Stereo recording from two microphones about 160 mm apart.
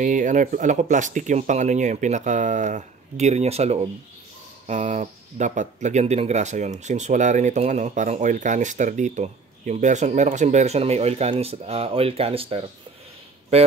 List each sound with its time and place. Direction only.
0.0 s speech: 50° right (ahead or behind)